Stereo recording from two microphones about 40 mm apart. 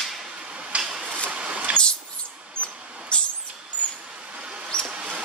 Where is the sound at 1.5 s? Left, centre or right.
Right.